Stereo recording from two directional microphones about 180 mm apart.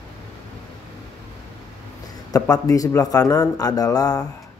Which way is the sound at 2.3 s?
20° left (ahead or behind).